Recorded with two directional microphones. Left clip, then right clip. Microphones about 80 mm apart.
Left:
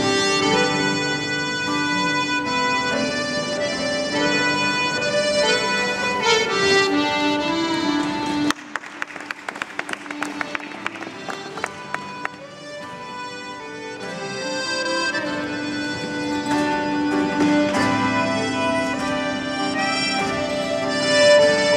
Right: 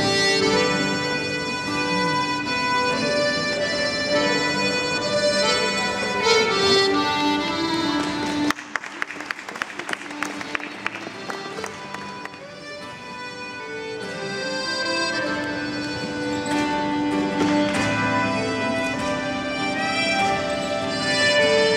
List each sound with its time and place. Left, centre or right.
0.0 s music: left
8.5 s music: centre
9.8 s applause: centre
14.3 s music: left